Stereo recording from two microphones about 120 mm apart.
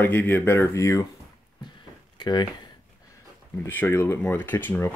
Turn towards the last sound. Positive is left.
turn(degrees=15)  # may be behind; listen again after turning